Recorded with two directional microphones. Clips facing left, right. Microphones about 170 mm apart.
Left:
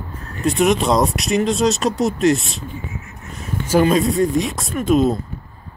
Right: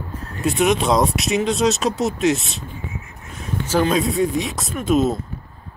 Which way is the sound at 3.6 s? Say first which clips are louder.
Left 4 dB; 10° left (ahead or behind).